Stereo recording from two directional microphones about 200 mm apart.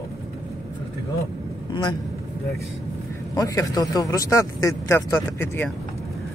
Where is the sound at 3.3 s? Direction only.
15° left (ahead or behind).